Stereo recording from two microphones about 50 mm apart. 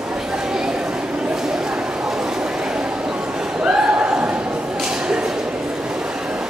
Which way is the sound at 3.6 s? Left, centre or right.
Right.